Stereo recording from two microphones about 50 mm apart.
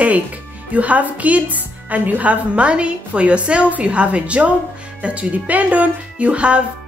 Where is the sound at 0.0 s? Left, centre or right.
Right.